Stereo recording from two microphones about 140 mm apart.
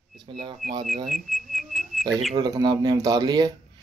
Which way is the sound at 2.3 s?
30° right (ahead or behind).